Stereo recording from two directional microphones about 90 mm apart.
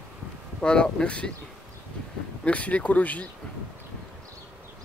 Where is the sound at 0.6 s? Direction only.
10° left (ahead or behind).